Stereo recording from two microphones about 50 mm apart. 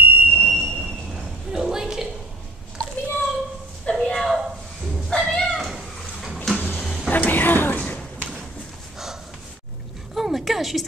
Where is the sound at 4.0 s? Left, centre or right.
Centre.